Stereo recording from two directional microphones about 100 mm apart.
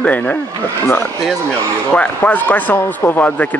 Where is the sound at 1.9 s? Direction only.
15° left (ahead or behind).